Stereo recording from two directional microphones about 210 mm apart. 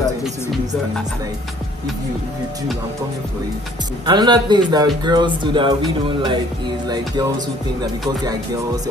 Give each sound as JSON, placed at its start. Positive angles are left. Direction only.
{"t": 4.0, "sound": "speech", "side_deg": -20}